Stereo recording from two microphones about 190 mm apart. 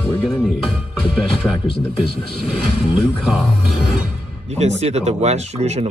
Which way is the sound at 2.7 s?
35° left (ahead or behind).